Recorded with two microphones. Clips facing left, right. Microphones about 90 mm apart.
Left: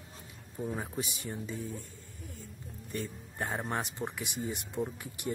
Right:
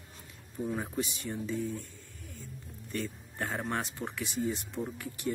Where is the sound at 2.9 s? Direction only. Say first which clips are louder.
Right 2 dB; 15° left (ahead or behind).